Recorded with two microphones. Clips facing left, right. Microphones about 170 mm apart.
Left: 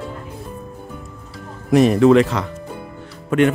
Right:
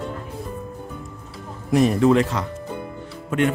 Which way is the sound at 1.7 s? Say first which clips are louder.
Left 4 dB; 80° left.